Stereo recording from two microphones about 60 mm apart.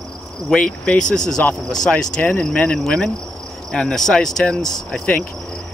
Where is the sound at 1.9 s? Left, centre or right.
Left.